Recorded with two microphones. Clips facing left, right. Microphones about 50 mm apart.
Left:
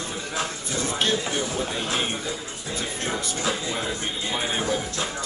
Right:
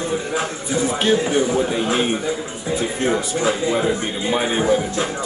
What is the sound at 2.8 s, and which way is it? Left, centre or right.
A man's voice, centre.